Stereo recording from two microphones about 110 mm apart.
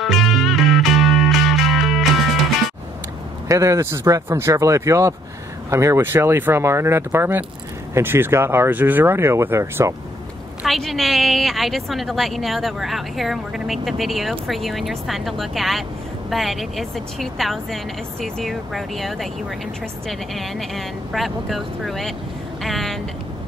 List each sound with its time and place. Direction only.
0.0 s music: centre (ahead or behind)
3.4 s speech: 30° right (ahead or behind)
10.6 s speech: centre (ahead or behind)